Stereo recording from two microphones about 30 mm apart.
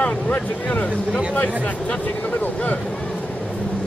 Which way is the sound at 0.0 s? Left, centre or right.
Left.